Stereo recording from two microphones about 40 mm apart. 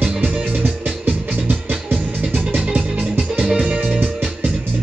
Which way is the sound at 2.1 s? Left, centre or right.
Centre.